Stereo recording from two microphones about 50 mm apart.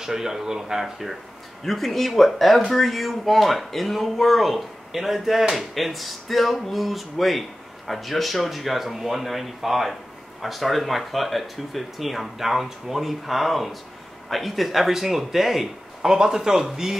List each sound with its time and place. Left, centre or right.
0.0 s speech: centre